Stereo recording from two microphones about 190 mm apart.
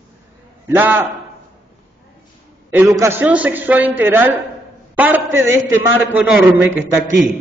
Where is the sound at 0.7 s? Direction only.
10° right (ahead or behind).